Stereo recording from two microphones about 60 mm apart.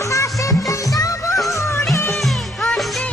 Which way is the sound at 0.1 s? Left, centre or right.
Left.